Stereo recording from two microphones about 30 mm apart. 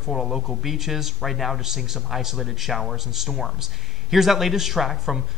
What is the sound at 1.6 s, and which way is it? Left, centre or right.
A man's voice, centre.